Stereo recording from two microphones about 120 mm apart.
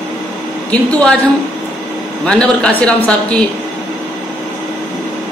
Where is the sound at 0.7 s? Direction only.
10° left (ahead or behind).